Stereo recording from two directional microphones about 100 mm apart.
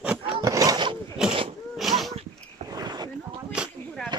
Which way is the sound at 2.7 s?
40° right (ahead or behind).